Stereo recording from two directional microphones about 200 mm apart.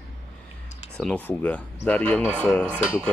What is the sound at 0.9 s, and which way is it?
Speech, 5° left (ahead or behind).